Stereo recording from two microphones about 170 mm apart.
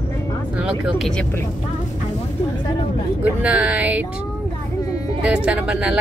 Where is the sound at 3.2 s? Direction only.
10° right (ahead or behind).